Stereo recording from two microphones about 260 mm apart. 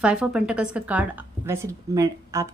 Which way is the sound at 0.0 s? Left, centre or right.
Centre.